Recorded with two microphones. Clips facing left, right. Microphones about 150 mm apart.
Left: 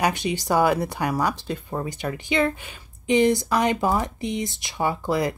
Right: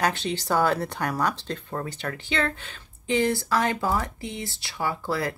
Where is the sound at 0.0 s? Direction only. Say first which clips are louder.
Left 2 dB; 15° left (ahead or behind).